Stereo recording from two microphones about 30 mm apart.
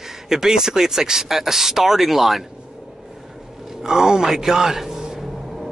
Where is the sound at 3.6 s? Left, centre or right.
Centre.